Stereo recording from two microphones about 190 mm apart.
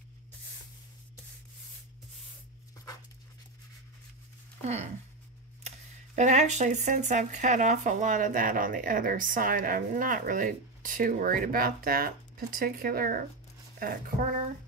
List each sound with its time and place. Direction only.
6.1 s speech: 40° right (ahead or behind)